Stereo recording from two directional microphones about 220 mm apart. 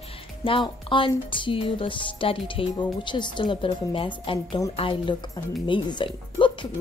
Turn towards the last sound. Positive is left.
turn(degrees=20)  # may be behind; listen again after turning